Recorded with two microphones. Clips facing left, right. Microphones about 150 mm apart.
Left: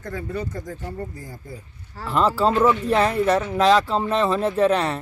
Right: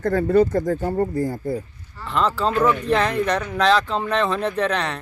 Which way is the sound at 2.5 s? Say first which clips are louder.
Left 1 dB; 25° left (ahead or behind).